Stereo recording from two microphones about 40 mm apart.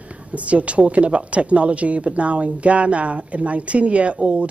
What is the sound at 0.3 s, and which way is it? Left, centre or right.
A woman's voice, right.